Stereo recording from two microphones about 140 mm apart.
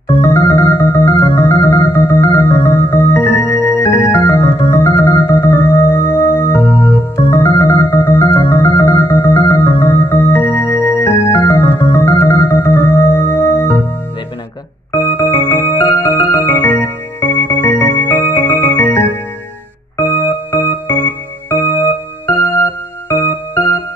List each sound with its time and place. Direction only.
0.1 s organ: 15° left (ahead or behind)
14.9 s music: 20° left (ahead or behind)